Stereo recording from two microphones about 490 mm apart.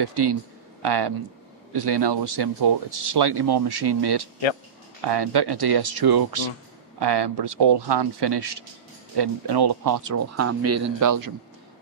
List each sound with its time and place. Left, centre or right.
0.0 s speech: right